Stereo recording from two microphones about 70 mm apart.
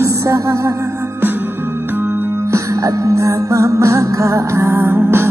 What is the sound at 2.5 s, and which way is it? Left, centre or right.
Music, right.